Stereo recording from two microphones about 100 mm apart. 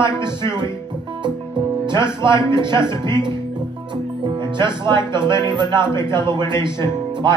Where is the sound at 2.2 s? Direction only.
50° right (ahead or behind).